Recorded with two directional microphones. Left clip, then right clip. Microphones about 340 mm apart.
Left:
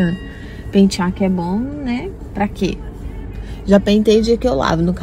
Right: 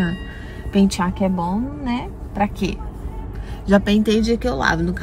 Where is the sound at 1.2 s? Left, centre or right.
Right.